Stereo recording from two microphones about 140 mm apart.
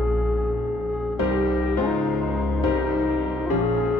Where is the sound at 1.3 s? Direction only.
Centre (ahead or behind).